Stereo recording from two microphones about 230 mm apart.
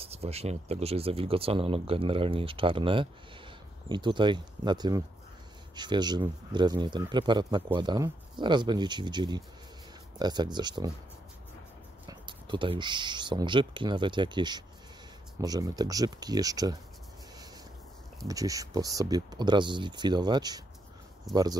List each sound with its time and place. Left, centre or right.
0.0 s speech: right
12.1 s speech: right
18.2 s speech: centre